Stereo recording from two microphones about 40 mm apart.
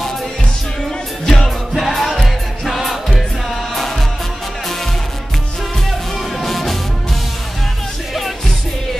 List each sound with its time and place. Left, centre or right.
1.2 s music: centre
1.8 s music: centre
5.9 s music: centre